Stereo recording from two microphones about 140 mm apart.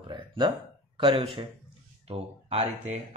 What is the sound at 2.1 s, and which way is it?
Speech, 50° right (ahead or behind).